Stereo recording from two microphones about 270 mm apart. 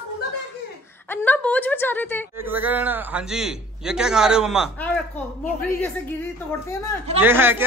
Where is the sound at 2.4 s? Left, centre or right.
Centre.